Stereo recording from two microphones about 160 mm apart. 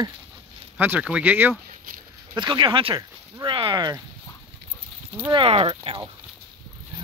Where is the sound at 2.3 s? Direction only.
30° right (ahead or behind).